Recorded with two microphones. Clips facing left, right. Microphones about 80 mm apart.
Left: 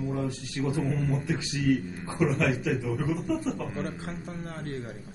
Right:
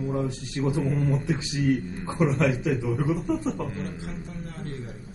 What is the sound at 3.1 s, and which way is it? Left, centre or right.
Speech, centre.